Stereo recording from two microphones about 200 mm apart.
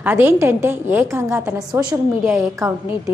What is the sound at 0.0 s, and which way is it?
A woman's voice, 10° right (ahead or behind).